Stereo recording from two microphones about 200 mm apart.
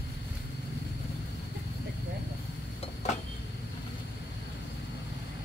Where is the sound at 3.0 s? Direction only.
35° left (ahead or behind).